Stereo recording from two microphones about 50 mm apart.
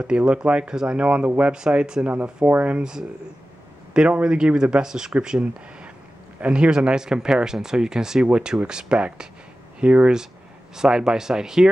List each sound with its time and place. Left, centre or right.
0.0 s speech: centre
2.0 s speech: right
3.9 s speech: centre